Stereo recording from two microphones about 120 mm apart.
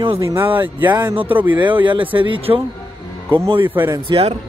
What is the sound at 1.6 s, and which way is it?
Speech, 45° right (ahead or behind).